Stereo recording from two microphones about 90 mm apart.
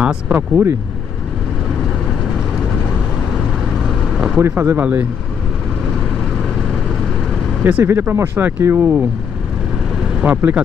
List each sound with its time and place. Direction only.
0.0 s speech: 10° right (ahead or behind)
0.4 s speech: 25° right (ahead or behind)
3.3 s vehicle: 5° right (ahead or behind)
4.4 s speech: 25° right (ahead or behind)
7.6 s speech: 25° right (ahead or behind)
10.2 s speech: 20° right (ahead or behind)